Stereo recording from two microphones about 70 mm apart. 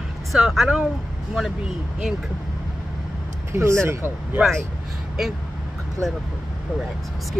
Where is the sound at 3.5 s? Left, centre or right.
Right.